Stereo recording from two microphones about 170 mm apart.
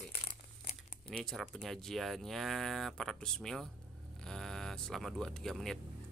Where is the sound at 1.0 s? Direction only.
5° left (ahead or behind).